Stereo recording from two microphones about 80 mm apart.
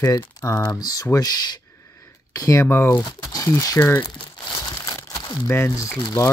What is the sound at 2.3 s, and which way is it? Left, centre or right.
Speech, left.